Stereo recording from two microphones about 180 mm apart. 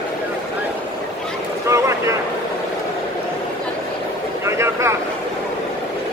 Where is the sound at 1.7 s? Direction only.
15° right (ahead or behind).